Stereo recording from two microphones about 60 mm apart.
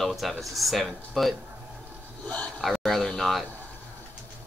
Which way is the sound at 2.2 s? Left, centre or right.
Left.